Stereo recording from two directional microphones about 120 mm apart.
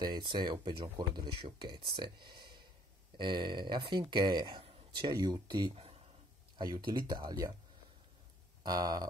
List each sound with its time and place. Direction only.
0.0 s speech: 40° right (ahead or behind)
4.6 s a sound: 45° right (ahead or behind)
5.1 s speech: 35° right (ahead or behind)
8.6 s speech: 35° right (ahead or behind)